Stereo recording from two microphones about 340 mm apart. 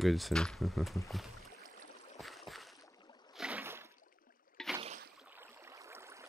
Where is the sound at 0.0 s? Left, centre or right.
Centre.